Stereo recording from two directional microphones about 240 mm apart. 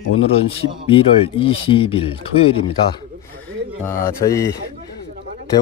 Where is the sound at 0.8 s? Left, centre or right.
Left.